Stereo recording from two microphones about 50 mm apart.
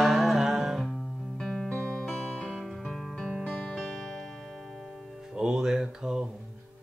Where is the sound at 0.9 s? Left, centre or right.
Centre.